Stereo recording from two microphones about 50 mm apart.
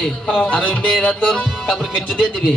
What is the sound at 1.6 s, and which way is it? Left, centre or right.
Speech, centre.